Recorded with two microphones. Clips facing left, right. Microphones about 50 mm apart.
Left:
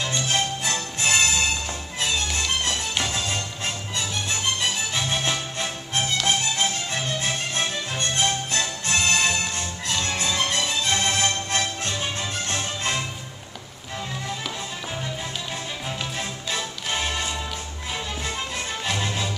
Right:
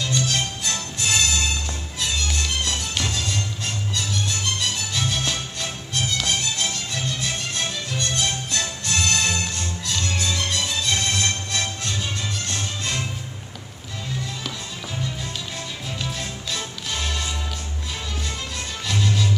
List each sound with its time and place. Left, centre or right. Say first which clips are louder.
0.1 s music: even; left
16.2 s music: left 1 dB; left
18.9 s music: right 4 dB; left